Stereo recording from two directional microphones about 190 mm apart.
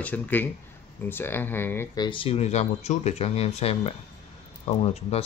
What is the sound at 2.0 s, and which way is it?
Speech, 30° left (ahead or behind).